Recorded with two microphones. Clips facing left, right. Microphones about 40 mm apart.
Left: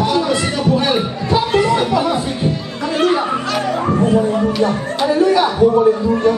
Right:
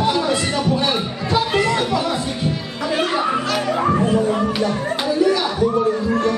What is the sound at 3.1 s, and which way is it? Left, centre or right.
Music, centre.